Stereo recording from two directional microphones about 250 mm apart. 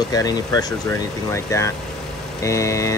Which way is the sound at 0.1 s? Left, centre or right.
Centre.